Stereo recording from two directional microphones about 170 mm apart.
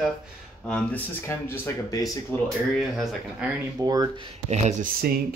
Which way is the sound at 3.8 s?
20° right (ahead or behind).